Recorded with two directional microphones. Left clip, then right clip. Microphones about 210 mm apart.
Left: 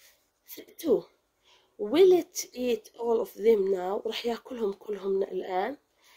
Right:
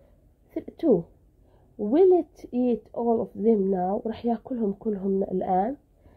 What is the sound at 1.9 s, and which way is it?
Speech, centre (ahead or behind).